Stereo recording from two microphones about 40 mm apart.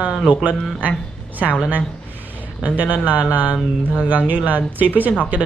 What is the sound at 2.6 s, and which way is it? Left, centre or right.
Speech, right.